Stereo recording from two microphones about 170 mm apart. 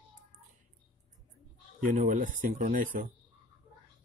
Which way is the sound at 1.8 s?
50° right (ahead or behind).